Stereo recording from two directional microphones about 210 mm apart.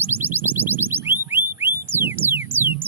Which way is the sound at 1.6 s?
10° right (ahead or behind).